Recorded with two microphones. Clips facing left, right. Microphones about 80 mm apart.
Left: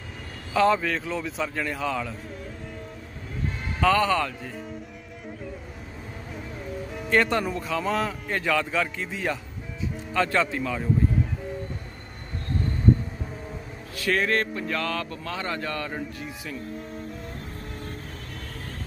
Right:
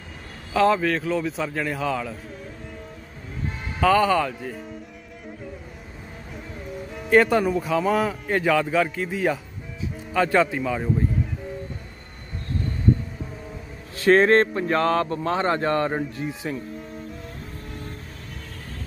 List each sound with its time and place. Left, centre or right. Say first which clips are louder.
0.5 s a man's voice: right 2 dB; centre
3.8 s a man's voice: right 3 dB; centre
7.1 s a man's voice: right 5 dB; centre
13.9 s speech: right 8 dB; right